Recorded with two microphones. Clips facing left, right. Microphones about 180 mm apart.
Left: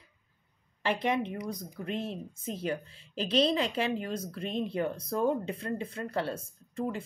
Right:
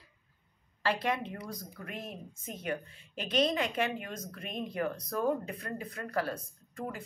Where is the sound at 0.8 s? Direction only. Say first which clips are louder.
Left 3 dB; 20° left (ahead or behind).